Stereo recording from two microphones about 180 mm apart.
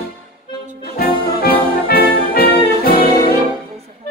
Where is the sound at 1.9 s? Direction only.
60° left (ahead or behind).